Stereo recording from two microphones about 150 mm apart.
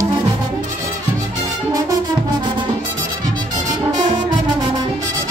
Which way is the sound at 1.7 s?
25° right (ahead or behind).